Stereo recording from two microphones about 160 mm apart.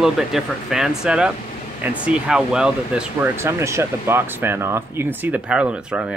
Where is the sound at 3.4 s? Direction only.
15° right (ahead or behind).